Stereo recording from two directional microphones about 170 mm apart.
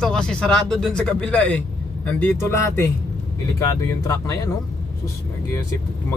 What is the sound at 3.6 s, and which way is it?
Speech, 15° left (ahead or behind).